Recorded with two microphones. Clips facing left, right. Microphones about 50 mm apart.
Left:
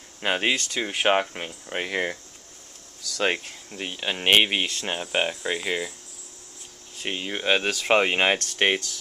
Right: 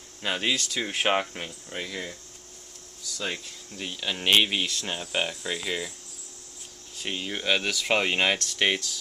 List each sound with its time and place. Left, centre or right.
0.2 s speech: left
0.7 s speech: centre
1.5 s speech: left
3.7 s speech: left
7.0 s speech: centre